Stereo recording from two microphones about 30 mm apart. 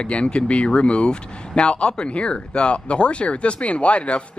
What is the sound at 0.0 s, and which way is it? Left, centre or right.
Speech, left.